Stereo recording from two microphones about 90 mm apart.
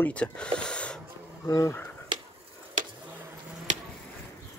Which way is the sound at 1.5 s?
40° left (ahead or behind).